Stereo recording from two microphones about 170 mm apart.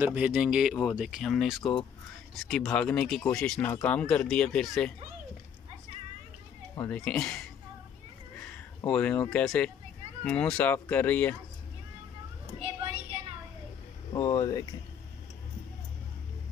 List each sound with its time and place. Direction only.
0.0 s speech: 10° right (ahead or behind)
1.6 s speech: 30° left (ahead or behind)
2.3 s speech: centre (ahead or behind)
6.8 s speech: 10° left (ahead or behind)
8.8 s speech: 10° left (ahead or behind)
14.1 s speech: 20° left (ahead or behind)